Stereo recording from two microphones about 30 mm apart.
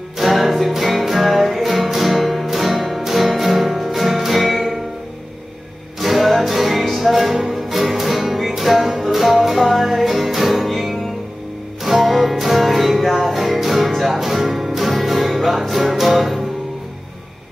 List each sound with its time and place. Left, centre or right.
0.3 s music: centre
5.9 s music: centre